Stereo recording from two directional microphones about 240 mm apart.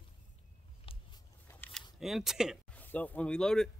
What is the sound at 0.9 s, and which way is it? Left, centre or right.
Vehicle, left.